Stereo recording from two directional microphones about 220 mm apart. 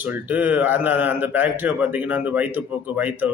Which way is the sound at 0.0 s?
5° right (ahead or behind).